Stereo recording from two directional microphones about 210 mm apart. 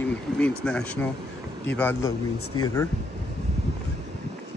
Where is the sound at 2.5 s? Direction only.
20° left (ahead or behind).